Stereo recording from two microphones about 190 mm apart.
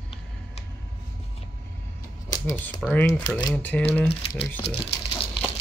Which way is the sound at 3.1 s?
20° left (ahead or behind).